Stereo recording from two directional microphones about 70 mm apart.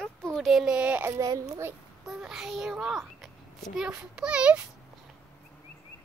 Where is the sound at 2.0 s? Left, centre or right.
Centre.